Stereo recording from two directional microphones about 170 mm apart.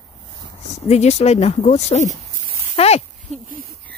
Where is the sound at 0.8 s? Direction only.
40° left (ahead or behind).